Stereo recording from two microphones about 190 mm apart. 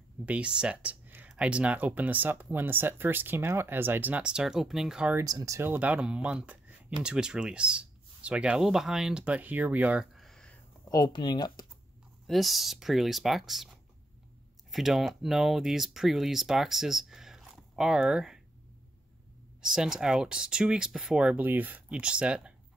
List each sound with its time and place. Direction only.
0.2 s speech: 5° right (ahead or behind)
5.2 s speech: 15° right (ahead or behind); by 10.5 s centre (ahead or behind)
10.9 s speech: 20° left (ahead or behind)
12.3 s speech: centre (ahead or behind)
14.7 s speech: centre (ahead or behind)
19.6 s speech: 5° right (ahead or behind)